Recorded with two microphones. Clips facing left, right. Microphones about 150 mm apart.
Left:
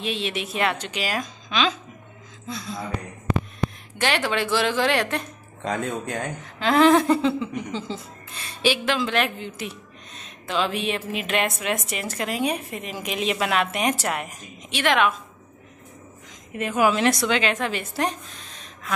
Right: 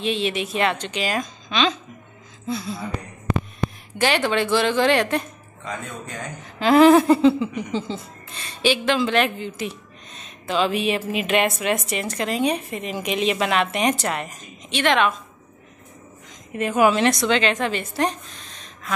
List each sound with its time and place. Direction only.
0.0 s speech: centre (ahead or behind)
4.0 s speech: centre (ahead or behind)
5.6 s speech: 65° left (ahead or behind)
6.6 s speech: 5° right (ahead or behind)
16.5 s speech: centre (ahead or behind)